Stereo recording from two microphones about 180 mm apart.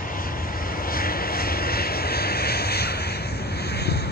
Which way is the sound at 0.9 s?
55° left (ahead or behind).